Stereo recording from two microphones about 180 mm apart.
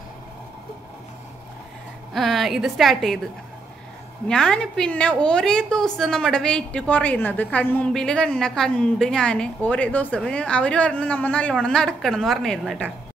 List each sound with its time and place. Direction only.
2.1 s a woman's voice: centre (ahead or behind)
4.3 s a woman's voice: 5° left (ahead or behind)